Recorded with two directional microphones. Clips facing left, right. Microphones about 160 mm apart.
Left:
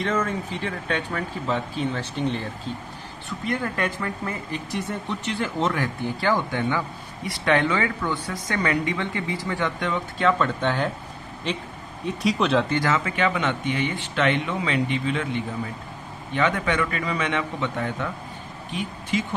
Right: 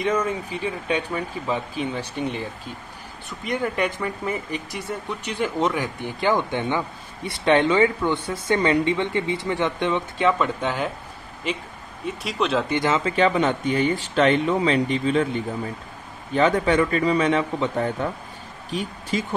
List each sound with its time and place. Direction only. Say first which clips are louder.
0.0 s speech: right 2 dB; 15° right (ahead or behind)
12.6 s speech: right 2 dB; 20° right (ahead or behind); by 19.2 s 40° right (ahead or behind)